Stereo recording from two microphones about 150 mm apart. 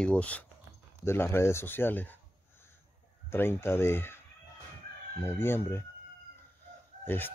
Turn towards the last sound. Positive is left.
turn(degrees=15)  # may be behind; listen again after turning